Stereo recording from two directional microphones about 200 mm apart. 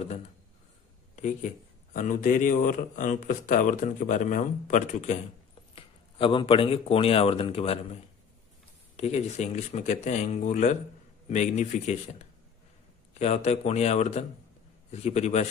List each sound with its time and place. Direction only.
1.1 s speech: 40° left (ahead or behind)
5.8 s speech: 25° left (ahead or behind)